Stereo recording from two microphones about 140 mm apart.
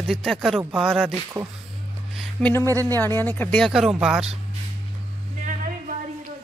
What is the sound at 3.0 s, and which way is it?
Speech, 15° left (ahead or behind).